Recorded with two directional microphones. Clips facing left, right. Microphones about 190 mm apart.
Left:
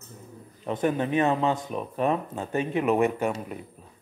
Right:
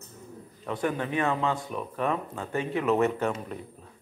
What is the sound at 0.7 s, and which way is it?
Speech, 20° left (ahead or behind).